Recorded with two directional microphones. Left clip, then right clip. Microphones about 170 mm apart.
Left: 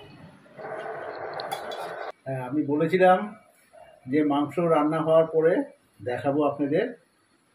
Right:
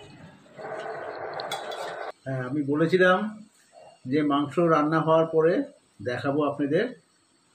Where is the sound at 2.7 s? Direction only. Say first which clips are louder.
Left 1 dB; 70° right (ahead or behind).